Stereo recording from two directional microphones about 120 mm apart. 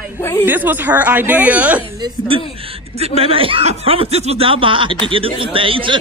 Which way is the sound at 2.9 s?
60° right (ahead or behind).